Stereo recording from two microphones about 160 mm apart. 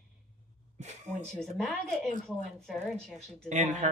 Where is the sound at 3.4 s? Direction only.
45° right (ahead or behind).